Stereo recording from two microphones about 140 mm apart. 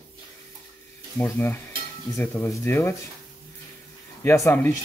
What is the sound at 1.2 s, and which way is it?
Speech, 10° left (ahead or behind).